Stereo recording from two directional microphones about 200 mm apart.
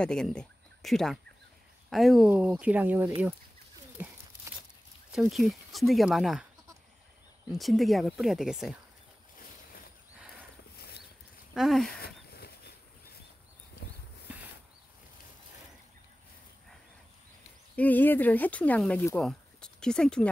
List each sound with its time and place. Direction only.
0.0 s speech: 5° left (ahead or behind)
3.2 s a sound: 10° right (ahead or behind)
5.1 s speech: centre (ahead or behind)
7.5 s speech: centre (ahead or behind)
10.8 s clip-clop: 55° left (ahead or behind)
11.5 s speech: centre (ahead or behind)
12.3 s a sound: 50° left (ahead or behind)
14.3 s a sound: 5° right (ahead or behind)
17.7 s speech: 10° left (ahead or behind)